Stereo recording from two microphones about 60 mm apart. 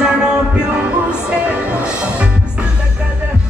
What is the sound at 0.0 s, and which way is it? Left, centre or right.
Music, centre.